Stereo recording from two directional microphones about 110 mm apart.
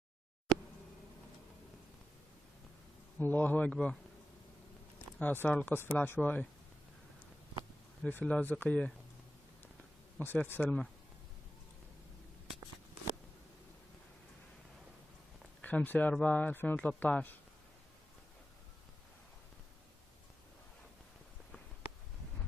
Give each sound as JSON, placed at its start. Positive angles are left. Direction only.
{"t": 3.2, "sound": "speech", "side_deg": 15}
{"t": 5.2, "sound": "speech", "side_deg": 15}
{"t": 8.0, "sound": "speech", "side_deg": 15}
{"t": 10.1, "sound": "speech", "side_deg": 15}
{"t": 15.6, "sound": "speech", "side_deg": 15}